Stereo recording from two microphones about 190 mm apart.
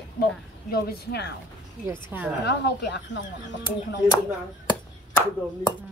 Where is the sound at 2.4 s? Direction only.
60° left (ahead or behind).